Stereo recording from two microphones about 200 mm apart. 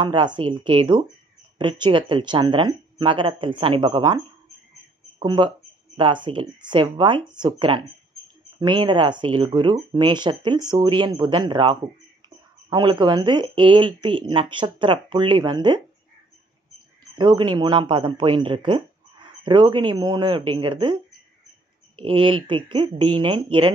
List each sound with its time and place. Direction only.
0.0 s speech: 25° right (ahead or behind)
5.2 s speech: 25° right (ahead or behind)
17.1 s speech: 25° right (ahead or behind)
22.0 s speech: 25° right (ahead or behind)